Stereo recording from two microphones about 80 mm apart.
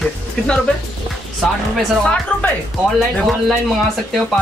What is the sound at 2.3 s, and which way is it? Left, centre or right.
Speech, centre.